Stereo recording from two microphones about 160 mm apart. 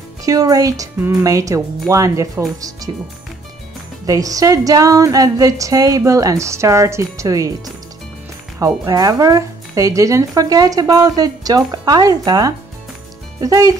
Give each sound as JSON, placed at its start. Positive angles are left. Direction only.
{"t": 0.2, "sound": "speech", "side_deg": -20}
{"t": 4.0, "sound": "speech", "side_deg": -20}
{"t": 8.5, "sound": "speech", "side_deg": -20}